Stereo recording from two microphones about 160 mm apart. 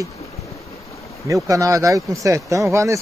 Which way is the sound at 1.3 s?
20° right (ahead or behind).